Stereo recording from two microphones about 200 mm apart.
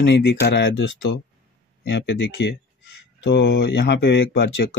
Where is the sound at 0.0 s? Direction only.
55° left (ahead or behind).